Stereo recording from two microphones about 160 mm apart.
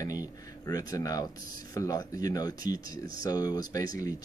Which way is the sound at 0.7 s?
25° left (ahead or behind).